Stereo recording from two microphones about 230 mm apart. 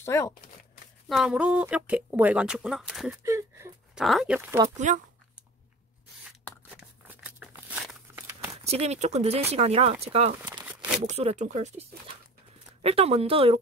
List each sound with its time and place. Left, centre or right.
0.0 s speech: centre
1.0 s speech: centre
3.3 s a sound: centre
4.0 s speech: centre
4.7 s speech: right
6.8 s a sound: centre
8.6 s speech: right
10.5 s a sound: centre
11.1 s speech: right